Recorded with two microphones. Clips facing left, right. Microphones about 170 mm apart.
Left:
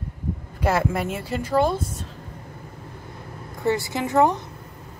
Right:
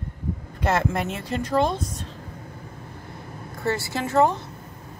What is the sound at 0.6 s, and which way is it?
Speech, 10° left (ahead or behind).